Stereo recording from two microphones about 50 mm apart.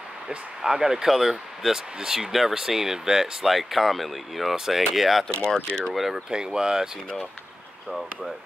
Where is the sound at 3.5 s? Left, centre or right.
Centre.